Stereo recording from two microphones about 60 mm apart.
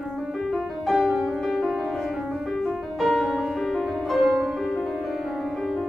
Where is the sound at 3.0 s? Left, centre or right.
Centre.